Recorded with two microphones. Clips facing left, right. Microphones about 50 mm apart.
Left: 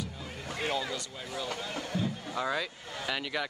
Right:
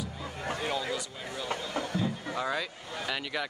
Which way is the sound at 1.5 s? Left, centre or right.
Right.